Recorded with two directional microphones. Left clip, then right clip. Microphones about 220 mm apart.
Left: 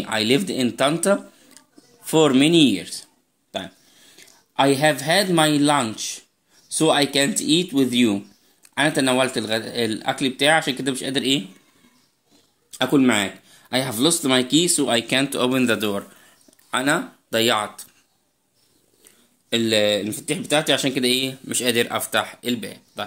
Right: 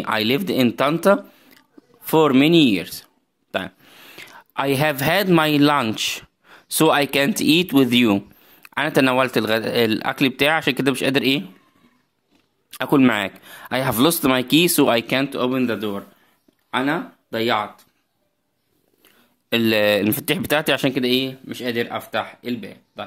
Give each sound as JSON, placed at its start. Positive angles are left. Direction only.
{"t": 0.0, "sound": "speech", "side_deg": -20}
{"t": 12.7, "sound": "speech", "side_deg": -30}
{"t": 15.1, "sound": "speech", "side_deg": 0}
{"t": 19.5, "sound": "speech", "side_deg": -25}
{"t": 20.8, "sound": "speech", "side_deg": -10}